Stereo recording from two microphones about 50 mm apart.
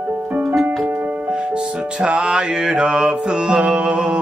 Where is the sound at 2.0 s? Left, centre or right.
Centre.